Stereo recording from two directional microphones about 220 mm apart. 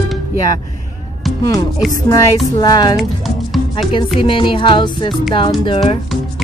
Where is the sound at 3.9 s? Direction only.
20° left (ahead or behind).